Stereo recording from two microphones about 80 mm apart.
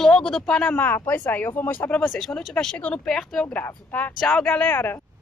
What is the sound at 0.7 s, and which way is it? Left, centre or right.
Speech, left.